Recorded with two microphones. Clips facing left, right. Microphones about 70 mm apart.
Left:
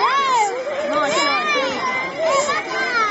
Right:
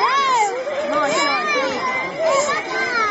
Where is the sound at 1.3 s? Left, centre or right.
Right.